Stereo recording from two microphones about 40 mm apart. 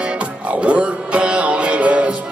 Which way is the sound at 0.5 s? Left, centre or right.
Right.